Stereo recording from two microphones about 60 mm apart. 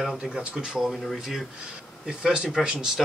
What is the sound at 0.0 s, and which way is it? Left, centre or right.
Speech, centre.